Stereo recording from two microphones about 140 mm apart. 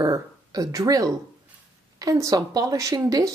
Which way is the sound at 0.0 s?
25° right (ahead or behind).